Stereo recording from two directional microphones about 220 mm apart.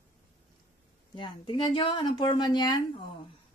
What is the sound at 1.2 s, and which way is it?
Speech, 25° left (ahead or behind).